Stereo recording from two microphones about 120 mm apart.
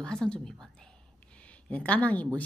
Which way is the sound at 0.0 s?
5° left (ahead or behind).